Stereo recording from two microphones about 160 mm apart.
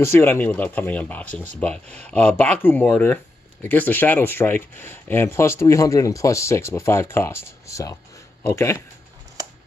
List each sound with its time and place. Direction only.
0.0 s speech: 15° left (ahead or behind)